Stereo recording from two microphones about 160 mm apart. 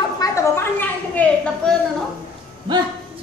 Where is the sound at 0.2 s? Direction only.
15° left (ahead or behind).